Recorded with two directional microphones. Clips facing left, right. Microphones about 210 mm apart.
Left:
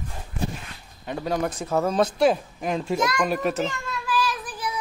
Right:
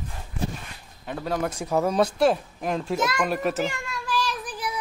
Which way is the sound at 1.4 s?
10° right (ahead or behind).